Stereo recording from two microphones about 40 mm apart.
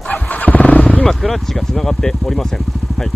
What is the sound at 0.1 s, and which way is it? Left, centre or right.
Vehicle, left.